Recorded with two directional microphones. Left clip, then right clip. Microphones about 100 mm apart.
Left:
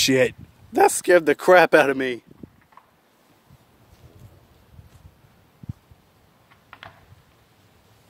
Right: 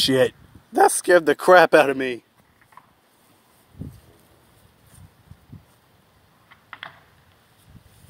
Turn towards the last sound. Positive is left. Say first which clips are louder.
# right 5 dB
turn(degrees=5)  # may be behind; listen again after turning